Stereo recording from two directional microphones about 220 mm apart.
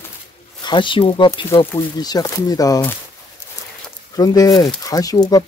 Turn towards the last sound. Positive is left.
turn(degrees=15)  # may be behind; listen again after turning